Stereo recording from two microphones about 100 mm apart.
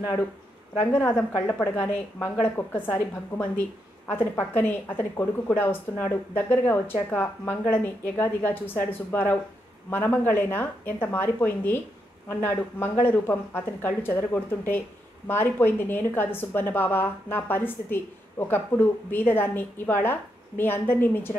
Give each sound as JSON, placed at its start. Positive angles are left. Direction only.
{"t": 0.9, "sound": "a woman's voice", "side_deg": 15}